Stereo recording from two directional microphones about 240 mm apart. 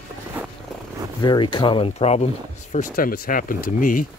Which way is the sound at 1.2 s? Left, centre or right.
Centre.